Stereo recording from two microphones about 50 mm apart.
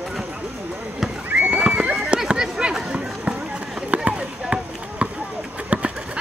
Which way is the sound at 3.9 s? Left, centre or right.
Right.